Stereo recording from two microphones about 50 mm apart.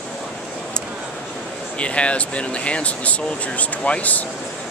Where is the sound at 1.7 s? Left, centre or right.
Left.